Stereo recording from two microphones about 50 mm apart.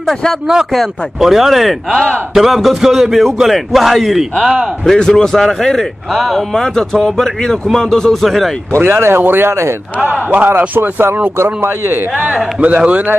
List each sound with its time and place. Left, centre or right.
1.2 s a man's voice: centre
4.9 s speech: centre
8.7 s speech: right
9.5 s speech: right
10.3 s speech: right
10.7 s speech: right
12.5 s a man's voice: right